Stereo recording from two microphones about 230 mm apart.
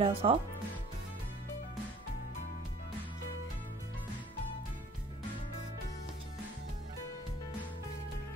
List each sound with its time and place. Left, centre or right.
0.0 s speech: right